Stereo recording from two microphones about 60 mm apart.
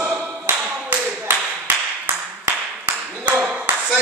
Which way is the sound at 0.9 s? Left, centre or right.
Right.